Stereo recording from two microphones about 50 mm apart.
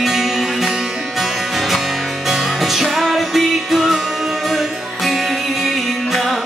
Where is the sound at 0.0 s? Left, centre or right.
Centre.